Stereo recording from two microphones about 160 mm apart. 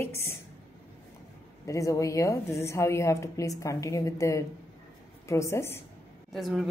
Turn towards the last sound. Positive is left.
turn(degrees=0)  # may be behind; listen again after turning